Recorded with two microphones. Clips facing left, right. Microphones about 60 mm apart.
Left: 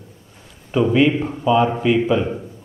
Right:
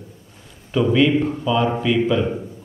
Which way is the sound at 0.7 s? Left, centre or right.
Centre.